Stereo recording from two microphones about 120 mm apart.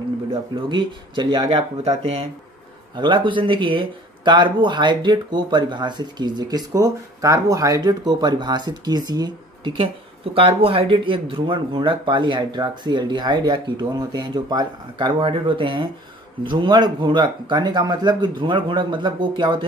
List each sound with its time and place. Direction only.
0.3 s speech: 45° right (ahead or behind)
1.9 s speech: 55° right (ahead or behind)
3.0 s speech: 40° right (ahead or behind)
10.3 s speech: 50° right (ahead or behind)